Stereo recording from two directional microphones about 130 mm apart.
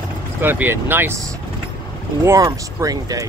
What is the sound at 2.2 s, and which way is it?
Speech, 25° right (ahead or behind).